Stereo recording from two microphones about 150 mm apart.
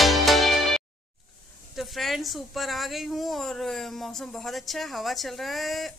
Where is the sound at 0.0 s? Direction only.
Centre (ahead or behind).